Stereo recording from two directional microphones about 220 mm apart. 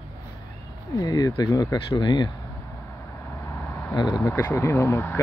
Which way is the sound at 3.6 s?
10° left (ahead or behind).